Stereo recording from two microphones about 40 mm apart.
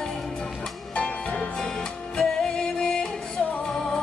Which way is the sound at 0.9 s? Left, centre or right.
Left.